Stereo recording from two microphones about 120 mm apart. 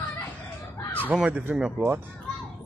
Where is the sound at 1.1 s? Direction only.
10° right (ahead or behind).